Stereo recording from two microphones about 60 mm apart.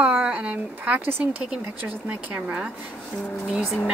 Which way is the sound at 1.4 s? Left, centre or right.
Centre.